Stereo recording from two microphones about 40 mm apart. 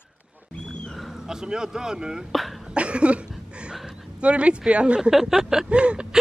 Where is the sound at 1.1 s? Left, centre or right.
Centre.